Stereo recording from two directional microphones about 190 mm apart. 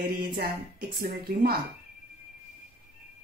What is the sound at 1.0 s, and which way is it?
Speech, 55° right (ahead or behind).